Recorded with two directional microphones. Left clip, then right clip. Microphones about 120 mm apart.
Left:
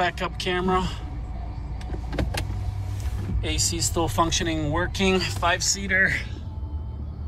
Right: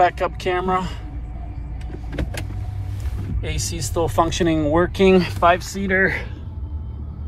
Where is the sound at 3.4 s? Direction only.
35° left (ahead or behind).